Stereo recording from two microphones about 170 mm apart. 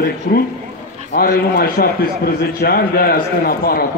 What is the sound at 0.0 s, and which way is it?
A man's voice, 60° left (ahead or behind).